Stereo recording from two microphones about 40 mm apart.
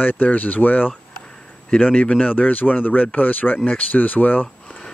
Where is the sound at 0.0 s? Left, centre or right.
Left.